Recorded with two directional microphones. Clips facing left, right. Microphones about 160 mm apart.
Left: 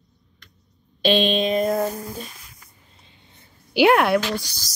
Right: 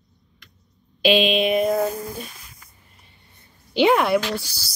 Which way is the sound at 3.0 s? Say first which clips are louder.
Left 2 dB; 20° left (ahead or behind).